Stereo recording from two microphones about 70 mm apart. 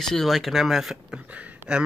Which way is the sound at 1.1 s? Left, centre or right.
Right.